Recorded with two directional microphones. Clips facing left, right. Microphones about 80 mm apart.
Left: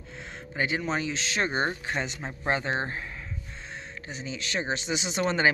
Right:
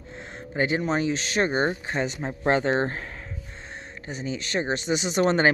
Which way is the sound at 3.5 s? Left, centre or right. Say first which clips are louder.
Even; right.